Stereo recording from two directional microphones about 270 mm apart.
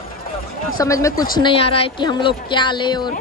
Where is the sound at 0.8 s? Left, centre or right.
Centre.